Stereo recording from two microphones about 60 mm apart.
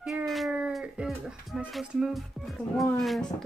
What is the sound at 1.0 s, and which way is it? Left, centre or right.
Speech, centre.